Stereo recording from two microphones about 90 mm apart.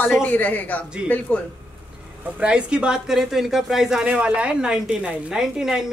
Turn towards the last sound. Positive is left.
turn(degrees=-5)  # may be behind; listen again after turning